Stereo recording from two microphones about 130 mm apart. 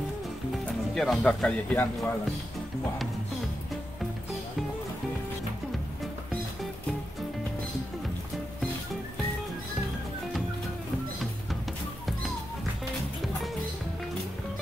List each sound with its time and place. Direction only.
0.9 s speech: centre (ahead or behind)